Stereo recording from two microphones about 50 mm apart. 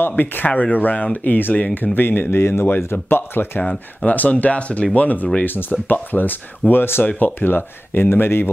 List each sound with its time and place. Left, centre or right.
0.1 s speech: left
2.0 s speech: left
4.0 s speech: left
7.1 s speech: left
7.3 s speech: left